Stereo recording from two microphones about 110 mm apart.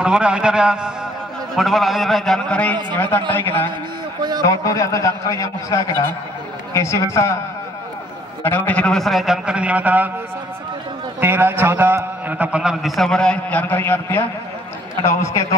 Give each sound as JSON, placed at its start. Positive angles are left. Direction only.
{"t": 0.0, "sound": "a man's voice", "side_deg": -10}
{"t": 4.5, "sound": "a man's voice", "side_deg": 30}
{"t": 8.5, "sound": "a man's voice", "side_deg": 15}
{"t": 11.1, "sound": "a man's voice", "side_deg": -20}